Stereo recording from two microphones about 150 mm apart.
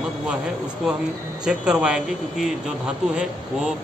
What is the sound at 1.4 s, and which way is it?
Speech, 5° right (ahead or behind).